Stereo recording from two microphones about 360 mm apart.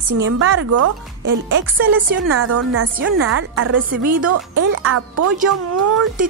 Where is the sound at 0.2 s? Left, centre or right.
Right.